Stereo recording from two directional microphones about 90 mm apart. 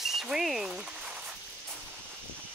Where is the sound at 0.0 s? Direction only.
5° right (ahead or behind).